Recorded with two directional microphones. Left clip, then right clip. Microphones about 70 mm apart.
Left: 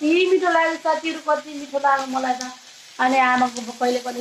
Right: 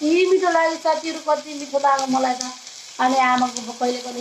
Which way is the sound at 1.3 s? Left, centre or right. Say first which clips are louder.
Right 1 dB; centre.